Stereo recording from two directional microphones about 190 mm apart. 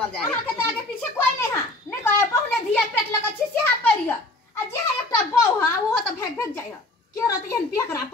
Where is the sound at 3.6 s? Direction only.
10° left (ahead or behind).